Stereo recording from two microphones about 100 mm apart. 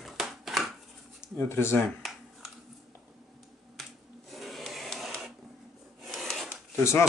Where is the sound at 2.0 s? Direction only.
Centre (ahead or behind).